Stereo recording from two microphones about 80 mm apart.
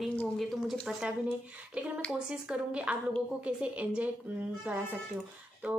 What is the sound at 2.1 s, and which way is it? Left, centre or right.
A woman's voice, centre.